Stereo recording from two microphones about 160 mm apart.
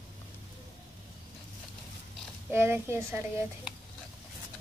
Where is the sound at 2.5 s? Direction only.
15° right (ahead or behind).